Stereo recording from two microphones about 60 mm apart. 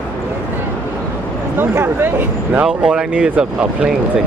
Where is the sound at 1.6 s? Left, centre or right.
Right.